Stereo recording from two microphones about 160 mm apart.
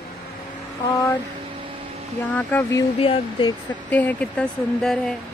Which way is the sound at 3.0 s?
30° left (ahead or behind).